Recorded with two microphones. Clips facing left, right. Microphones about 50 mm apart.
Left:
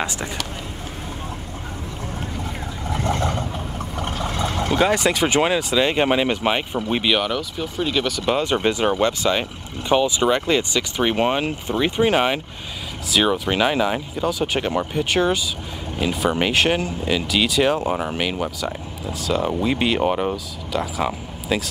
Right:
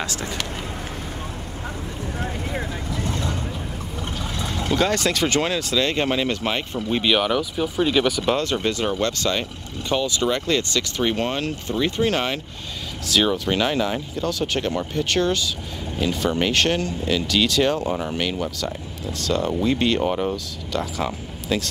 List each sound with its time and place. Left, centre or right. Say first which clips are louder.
2.9 s vehicle: left 7 dB; left
4.2 s boat: left 5 dB; left
4.6 s speech: left 2 dB; centre
7.1 s speech: right 4 dB; centre
8.4 s speech: left 3 dB; centre
17.8 s speech: left 2 dB; centre